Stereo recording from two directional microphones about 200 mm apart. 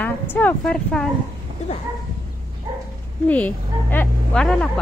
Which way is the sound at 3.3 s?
5° left (ahead or behind).